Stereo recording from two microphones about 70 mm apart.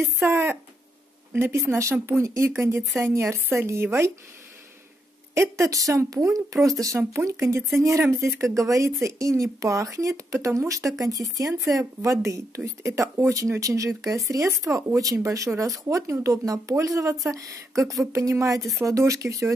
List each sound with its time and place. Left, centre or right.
0.2 s speech: right
5.3 s speech: right